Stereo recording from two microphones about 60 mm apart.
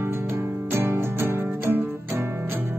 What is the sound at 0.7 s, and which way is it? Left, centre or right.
Music, right.